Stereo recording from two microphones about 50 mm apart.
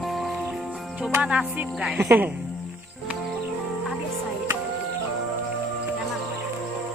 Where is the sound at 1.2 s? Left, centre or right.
Right.